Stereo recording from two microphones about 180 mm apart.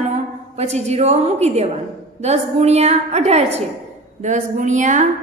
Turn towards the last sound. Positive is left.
turn(degrees=-45)  # may be behind; listen again after turning